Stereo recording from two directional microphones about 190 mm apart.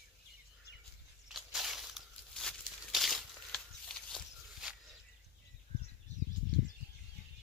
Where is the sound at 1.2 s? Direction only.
Centre (ahead or behind).